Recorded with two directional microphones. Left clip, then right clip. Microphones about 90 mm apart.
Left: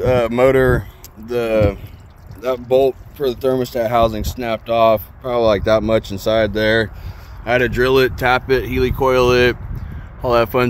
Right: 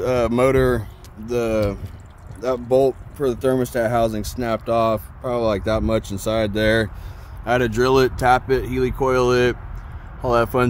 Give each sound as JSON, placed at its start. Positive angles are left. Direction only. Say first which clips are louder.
{"t": 0.0, "sound": "speech", "louder": "left 4 dB", "side_deg": -45}
{"t": 2.7, "sound": "speech", "louder": "left 3 dB", "side_deg": -45}
{"t": 7.4, "sound": "speech", "louder": "left 3 dB", "side_deg": -85}
{"t": 8.2, "sound": "speech", "louder": "left 1 dB", "side_deg": -30}
{"t": 8.5, "sound": "speech", "louder": "left 4 dB", "side_deg": -20}